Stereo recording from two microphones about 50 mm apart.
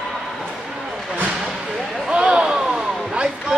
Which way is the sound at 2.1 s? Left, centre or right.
Centre.